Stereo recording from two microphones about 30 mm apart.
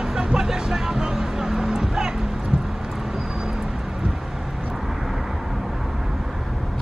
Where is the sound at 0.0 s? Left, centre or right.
Right.